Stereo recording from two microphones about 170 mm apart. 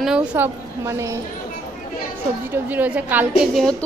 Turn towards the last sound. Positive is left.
turn(degrees=5)  # may be behind; listen again after turning